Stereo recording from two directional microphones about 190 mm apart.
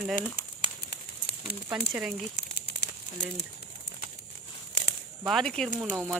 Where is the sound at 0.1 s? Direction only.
50° left (ahead or behind).